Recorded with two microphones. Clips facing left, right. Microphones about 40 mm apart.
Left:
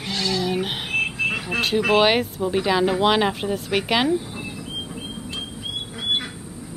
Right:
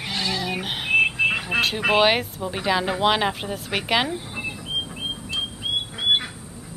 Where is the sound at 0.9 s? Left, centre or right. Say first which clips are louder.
Right 4 dB; right.